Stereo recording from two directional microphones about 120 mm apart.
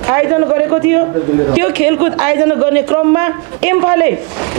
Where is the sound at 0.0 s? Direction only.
20° right (ahead or behind).